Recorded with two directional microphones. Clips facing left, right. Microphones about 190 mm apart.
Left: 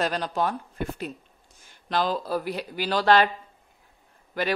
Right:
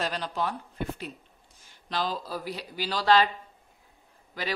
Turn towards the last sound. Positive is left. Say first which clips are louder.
# left 7 dB
turn(degrees=55)  # may be behind; listen again after turning